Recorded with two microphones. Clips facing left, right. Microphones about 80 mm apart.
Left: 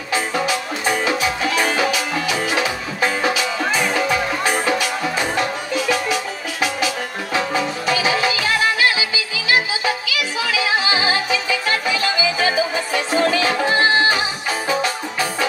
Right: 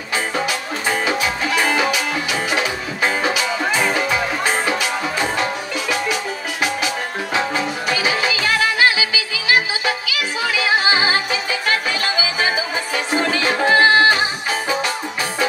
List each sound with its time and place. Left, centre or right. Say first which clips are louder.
7.9 s music: left 2 dB; left
10.4 s music: right 2 dB; right
13.1 s music: left 2 dB; right